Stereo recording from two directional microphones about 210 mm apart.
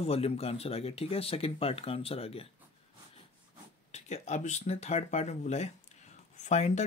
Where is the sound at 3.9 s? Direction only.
35° left (ahead or behind).